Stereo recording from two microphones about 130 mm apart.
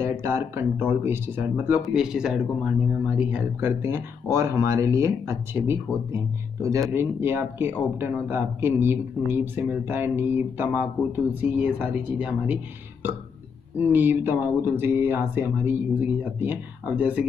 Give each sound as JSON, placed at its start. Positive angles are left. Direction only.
{"t": 0.0, "sound": "speech", "side_deg": -20}
{"t": 13.7, "sound": "speech", "side_deg": -15}